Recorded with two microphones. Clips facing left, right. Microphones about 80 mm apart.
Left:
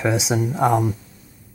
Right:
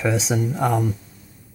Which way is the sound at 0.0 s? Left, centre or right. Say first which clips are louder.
Left 1 dB; centre.